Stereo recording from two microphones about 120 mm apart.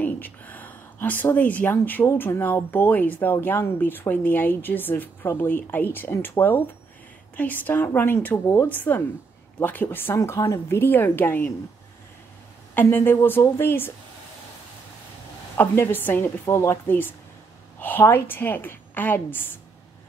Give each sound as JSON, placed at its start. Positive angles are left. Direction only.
{"t": 0.0, "sound": "a woman's voice", "side_deg": 15}
{"t": 12.7, "sound": "a woman's voice", "side_deg": 15}
{"t": 15.5, "sound": "a woman's voice", "side_deg": 20}